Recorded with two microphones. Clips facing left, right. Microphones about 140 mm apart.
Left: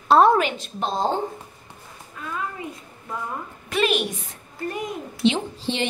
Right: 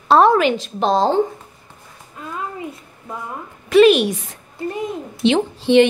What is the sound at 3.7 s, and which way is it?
Speech, 90° right.